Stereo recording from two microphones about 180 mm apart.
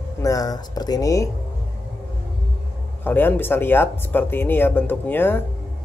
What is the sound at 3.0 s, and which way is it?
Speech, 10° left (ahead or behind).